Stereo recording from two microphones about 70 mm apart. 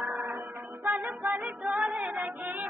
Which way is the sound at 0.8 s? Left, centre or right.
Right.